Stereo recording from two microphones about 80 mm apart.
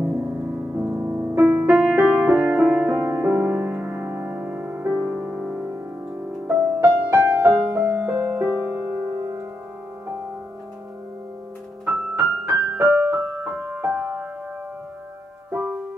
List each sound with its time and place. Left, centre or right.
0.0 s music: right
1.6 s music: centre
2.5 s music: centre
3.0 s music: right
12.2 s piano: right
13.6 s music: right